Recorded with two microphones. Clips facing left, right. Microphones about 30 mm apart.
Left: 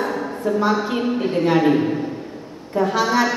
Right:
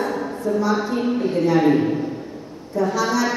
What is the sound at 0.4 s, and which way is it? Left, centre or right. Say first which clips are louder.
A woman's voice: left 2 dB; left.